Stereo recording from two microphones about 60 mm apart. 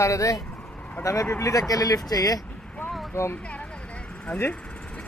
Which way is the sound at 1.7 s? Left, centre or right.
Left.